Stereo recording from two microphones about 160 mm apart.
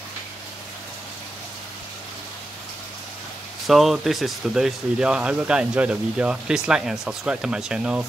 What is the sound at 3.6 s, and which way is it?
Speech, centre (ahead or behind).